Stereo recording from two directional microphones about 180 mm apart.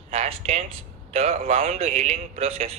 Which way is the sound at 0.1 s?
35° right (ahead or behind).